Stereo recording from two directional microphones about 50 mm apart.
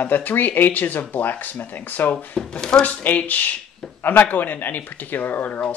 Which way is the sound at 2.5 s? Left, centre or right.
Centre.